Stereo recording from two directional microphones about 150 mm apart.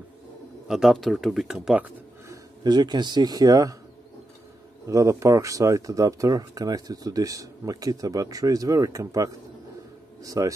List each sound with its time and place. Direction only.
0.7 s speech: centre (ahead or behind)
2.2 s a man's voice: 30° right (ahead or behind)
4.8 s speech: 20° right (ahead or behind)